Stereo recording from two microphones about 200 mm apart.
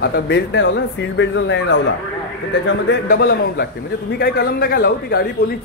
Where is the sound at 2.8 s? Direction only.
55° left (ahead or behind).